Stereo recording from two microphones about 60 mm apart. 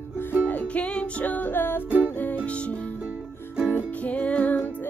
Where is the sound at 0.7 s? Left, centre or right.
Left.